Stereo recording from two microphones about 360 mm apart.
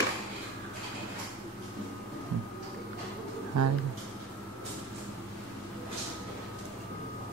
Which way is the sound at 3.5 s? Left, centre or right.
Right.